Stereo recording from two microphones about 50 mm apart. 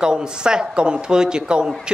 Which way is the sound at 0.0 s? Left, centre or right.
Centre.